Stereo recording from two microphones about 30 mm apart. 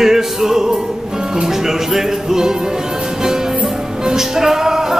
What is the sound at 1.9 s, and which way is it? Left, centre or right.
Music, centre.